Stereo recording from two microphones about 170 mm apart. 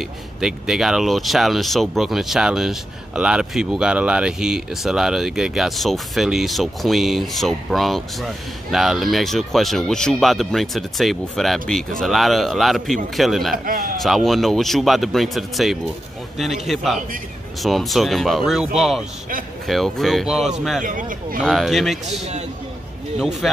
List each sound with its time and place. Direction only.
0.0 s speech: centre (ahead or behind)
20.8 s speech: 55° right (ahead or behind)
21.4 s speech: centre (ahead or behind)
23.1 s speech: centre (ahead or behind)